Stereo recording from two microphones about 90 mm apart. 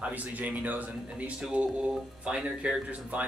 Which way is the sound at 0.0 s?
15° right (ahead or behind).